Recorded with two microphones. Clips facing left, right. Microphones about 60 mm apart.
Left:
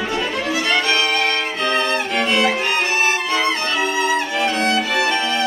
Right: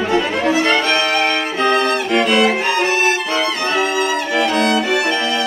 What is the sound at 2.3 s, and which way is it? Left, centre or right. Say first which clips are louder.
Violin: right 3 dB; right.